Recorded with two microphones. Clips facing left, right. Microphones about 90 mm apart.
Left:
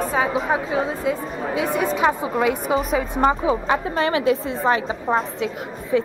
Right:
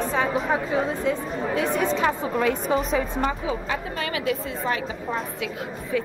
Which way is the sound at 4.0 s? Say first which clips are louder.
Left 7 dB; 30° left (ahead or behind).